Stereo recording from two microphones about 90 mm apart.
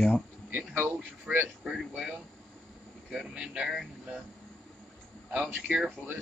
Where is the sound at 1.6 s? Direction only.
5° right (ahead or behind).